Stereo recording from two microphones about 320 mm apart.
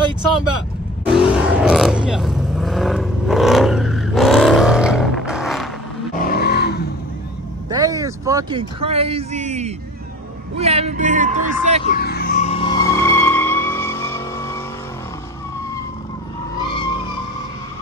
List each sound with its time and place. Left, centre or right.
1.0 s vehicle: centre
6.2 s a sound: left
7.7 s speech: centre
11.8 s vehicle: left; by 14.6 s centre